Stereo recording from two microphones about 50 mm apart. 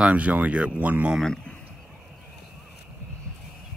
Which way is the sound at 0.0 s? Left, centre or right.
Right.